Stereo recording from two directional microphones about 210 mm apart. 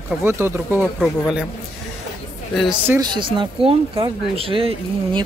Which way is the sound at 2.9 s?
20° right (ahead or behind).